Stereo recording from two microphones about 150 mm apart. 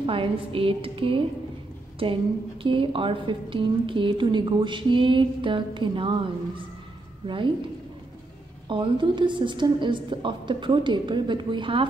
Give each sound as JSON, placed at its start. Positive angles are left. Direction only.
{"t": 0.0, "sound": "speech", "side_deg": -35}
{"t": 2.6, "sound": "speech", "side_deg": -35}
{"t": 8.6, "sound": "speech", "side_deg": -35}